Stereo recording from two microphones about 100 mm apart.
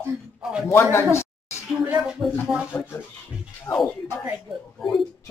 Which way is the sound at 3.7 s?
25° left (ahead or behind).